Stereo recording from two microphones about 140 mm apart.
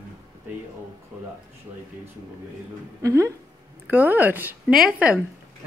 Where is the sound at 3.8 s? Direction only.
10° right (ahead or behind).